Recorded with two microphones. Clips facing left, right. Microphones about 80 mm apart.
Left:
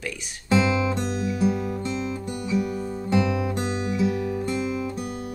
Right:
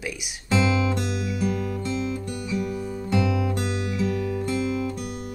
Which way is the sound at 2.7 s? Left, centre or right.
Left.